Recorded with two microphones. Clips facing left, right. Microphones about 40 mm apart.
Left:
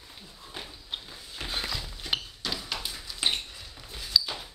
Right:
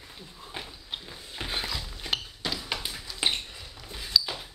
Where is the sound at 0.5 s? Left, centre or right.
Centre.